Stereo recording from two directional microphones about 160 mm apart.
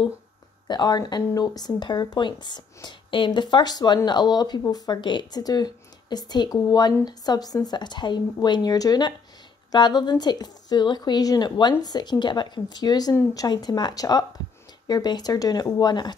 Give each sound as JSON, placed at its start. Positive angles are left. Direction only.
{"t": 0.7, "sound": "speech", "side_deg": 25}